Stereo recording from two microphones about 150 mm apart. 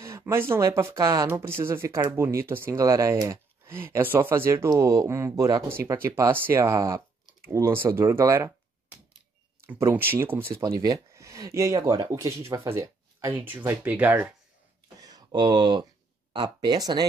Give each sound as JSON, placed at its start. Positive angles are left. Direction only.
{"t": 0.0, "sound": "speech", "side_deg": -20}
{"t": 15.0, "sound": "speech", "side_deg": -25}